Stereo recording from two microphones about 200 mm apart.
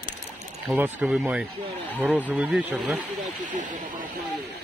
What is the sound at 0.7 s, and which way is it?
Speech, 10° right (ahead or behind).